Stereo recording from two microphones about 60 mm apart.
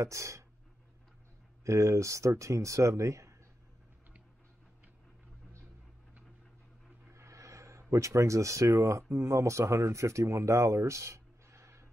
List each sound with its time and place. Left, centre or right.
0.0 s speech: right
1.6 s speech: right
7.1 s speech: right